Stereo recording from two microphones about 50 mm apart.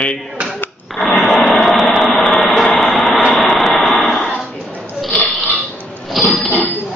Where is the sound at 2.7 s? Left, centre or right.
Centre.